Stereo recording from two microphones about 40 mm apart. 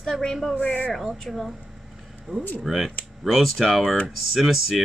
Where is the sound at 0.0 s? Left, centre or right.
Centre.